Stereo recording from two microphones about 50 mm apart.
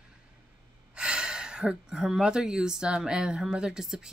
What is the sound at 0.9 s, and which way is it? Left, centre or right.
Speech, centre.